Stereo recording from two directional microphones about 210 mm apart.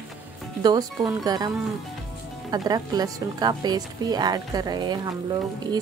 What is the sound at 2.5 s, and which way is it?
Speech, 20° right (ahead or behind).